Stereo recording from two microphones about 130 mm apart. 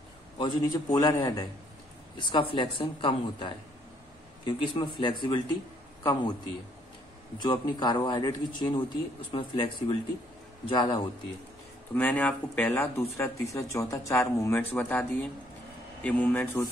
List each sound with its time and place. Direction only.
0.4 s speech: 30° left (ahead or behind)
7.4 s speech: 35° left (ahead or behind)
11.9 s speech: 15° left (ahead or behind)
12.9 s speech: 20° left (ahead or behind)